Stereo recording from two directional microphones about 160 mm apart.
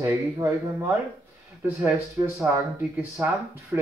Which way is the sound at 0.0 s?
20° right (ahead or behind).